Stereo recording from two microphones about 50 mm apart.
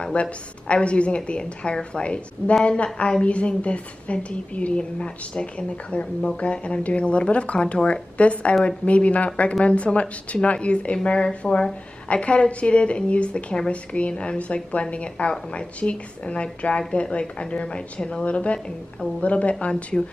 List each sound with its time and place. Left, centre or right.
0.0 s a woman's voice: left